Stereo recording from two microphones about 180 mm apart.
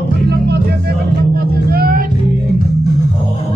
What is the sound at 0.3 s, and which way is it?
Music, 65° right (ahead or behind).